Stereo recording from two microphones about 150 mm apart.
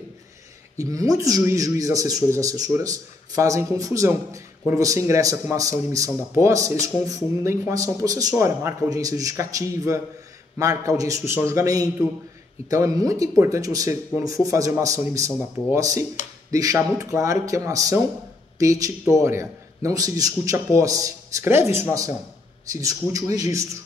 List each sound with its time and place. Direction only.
0.7 s speech: 20° right (ahead or behind)